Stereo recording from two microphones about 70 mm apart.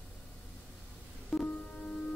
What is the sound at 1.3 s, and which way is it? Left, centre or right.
Music, centre.